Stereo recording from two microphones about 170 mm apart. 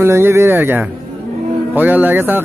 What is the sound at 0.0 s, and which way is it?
Speech, 15° right (ahead or behind).